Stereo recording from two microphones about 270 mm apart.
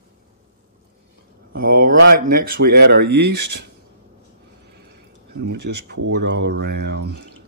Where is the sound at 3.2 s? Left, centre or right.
Right.